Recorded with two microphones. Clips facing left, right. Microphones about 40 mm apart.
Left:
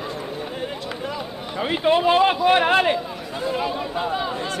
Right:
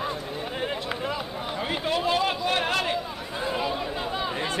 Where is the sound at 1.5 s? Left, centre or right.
Centre.